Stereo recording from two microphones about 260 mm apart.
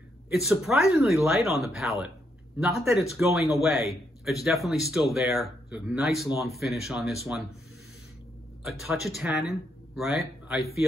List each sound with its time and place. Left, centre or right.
0.3 s speech: centre
8.6 s speech: centre
9.3 s speech: left
9.9 s speech: centre